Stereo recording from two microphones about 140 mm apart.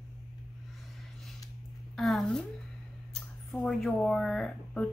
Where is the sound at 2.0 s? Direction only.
Centre (ahead or behind).